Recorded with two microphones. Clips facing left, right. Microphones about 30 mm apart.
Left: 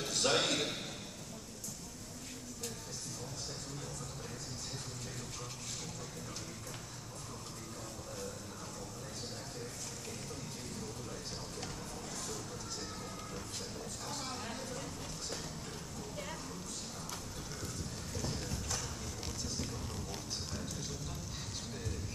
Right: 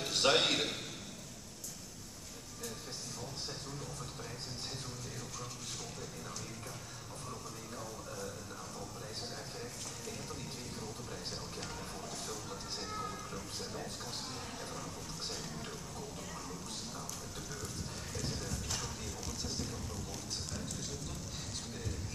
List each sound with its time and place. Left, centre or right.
0.1 s a man's voice: right
20.5 s clip-clop: centre